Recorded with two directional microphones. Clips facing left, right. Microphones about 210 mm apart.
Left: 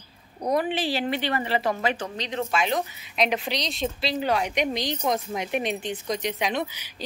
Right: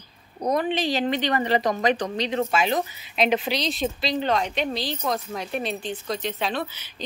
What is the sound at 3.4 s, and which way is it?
A woman's voice, centre (ahead or behind).